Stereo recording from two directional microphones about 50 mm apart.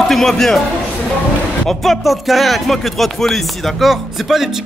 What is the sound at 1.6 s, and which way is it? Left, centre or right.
Speech, centre.